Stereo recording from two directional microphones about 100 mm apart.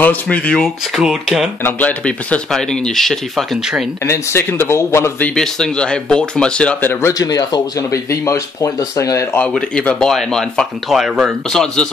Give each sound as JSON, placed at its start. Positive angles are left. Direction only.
{"t": 0.0, "sound": "speech", "side_deg": 15}
{"t": 0.9, "sound": "speech", "side_deg": -5}
{"t": 1.6, "sound": "speech", "side_deg": 15}
{"t": 4.0, "sound": "speech", "side_deg": 25}
{"t": 5.2, "sound": "speech", "side_deg": 5}
{"t": 7.2, "sound": "speech", "side_deg": 40}
{"t": 9.4, "sound": "speech", "side_deg": 10}
{"t": 11.5, "sound": "speech", "side_deg": 5}